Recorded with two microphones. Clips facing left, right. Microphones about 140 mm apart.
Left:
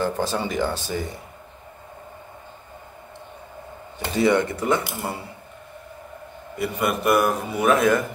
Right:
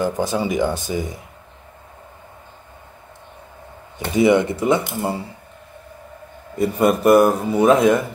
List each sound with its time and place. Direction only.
0.0 s speech: 15° right (ahead or behind)
4.1 s speech: 15° right (ahead or behind)
6.6 s a man's voice: 40° right (ahead or behind)